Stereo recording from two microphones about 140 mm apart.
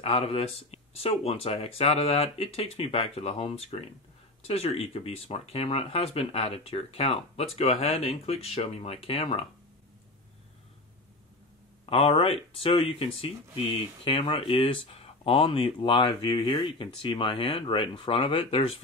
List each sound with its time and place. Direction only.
0.0 s speech: 45° left (ahead or behind)
11.8 s speech: 45° left (ahead or behind)